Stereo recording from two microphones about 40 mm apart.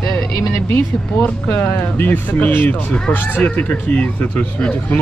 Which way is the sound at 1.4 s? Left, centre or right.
Left.